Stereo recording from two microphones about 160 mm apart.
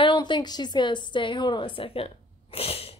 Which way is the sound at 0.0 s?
30° left (ahead or behind).